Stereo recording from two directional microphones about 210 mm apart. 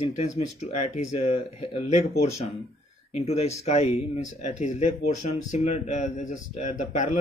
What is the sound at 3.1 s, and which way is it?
Speech, 30° left (ahead or behind).